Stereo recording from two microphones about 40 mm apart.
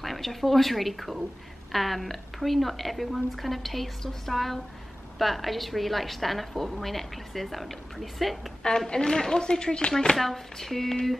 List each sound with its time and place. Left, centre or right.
0.0 s a woman's voice: centre
8.6 s a woman's voice: centre
10.1 s a sound: centre